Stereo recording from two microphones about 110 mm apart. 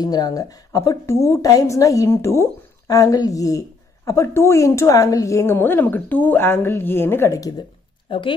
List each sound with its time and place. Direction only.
0.0 s a woman's voice: 35° left (ahead or behind)
8.1 s a woman's voice: 50° left (ahead or behind)